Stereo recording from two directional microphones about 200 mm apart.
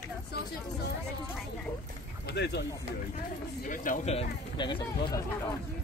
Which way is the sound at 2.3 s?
55° left (ahead or behind).